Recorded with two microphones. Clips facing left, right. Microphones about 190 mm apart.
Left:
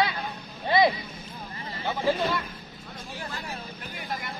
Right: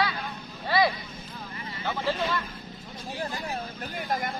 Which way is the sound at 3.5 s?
45° right (ahead or behind).